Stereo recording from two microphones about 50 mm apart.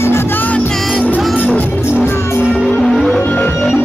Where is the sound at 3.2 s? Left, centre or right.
Left.